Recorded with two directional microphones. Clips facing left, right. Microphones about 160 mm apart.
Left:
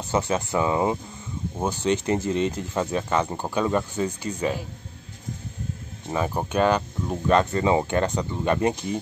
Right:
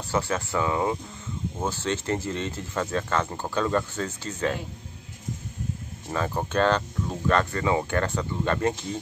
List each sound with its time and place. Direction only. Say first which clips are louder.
0.0 s speech: left 3 dB; 20° left (ahead or behind)
6.0 s speech: left 2 dB; 15° left (ahead or behind)